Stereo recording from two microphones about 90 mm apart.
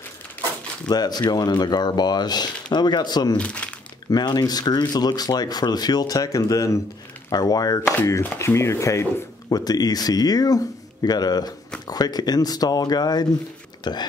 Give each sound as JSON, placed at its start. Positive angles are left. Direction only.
{"t": 0.8, "sound": "speech", "side_deg": 50}
{"t": 3.3, "sound": "speech", "side_deg": 15}
{"t": 4.1, "sound": "speech", "side_deg": 50}
{"t": 8.0, "sound": "speech", "side_deg": 25}
{"t": 9.5, "sound": "speech", "side_deg": 45}